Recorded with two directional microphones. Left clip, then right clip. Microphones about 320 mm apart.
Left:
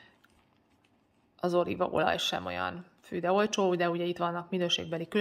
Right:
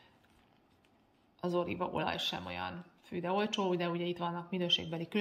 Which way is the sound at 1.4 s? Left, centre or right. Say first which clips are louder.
Left 6 dB; centre.